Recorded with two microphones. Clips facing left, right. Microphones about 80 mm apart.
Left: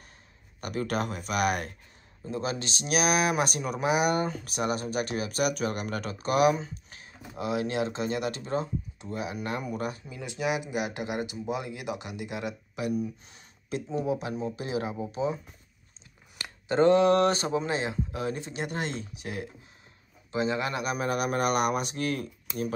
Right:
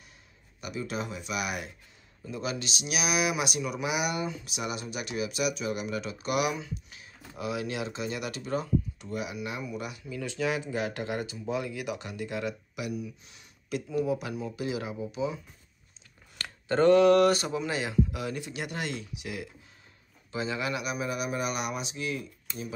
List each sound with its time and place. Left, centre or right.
0.6 s speech: left
2.2 s speech: left
10.0 s speech: left
12.8 s speech: left
16.6 s speech: left